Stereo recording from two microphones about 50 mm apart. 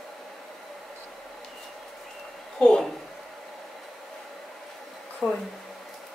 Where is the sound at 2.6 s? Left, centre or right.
Centre.